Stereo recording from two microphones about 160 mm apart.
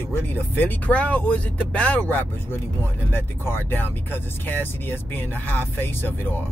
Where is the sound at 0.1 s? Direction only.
10° left (ahead or behind).